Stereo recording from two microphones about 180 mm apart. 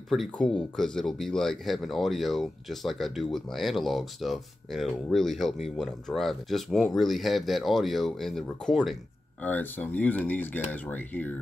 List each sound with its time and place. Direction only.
0.1 s speech: centre (ahead or behind)